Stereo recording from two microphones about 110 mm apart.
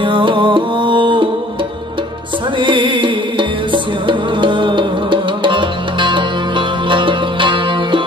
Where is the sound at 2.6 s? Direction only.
50° right (ahead or behind).